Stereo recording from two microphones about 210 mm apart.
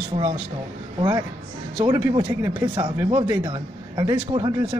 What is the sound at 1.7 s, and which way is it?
Speech, 20° right (ahead or behind).